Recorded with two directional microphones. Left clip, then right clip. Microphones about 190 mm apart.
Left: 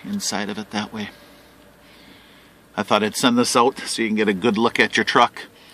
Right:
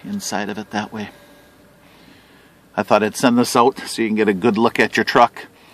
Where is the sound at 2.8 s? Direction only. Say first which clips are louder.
Right 3 dB; 25° right (ahead or behind).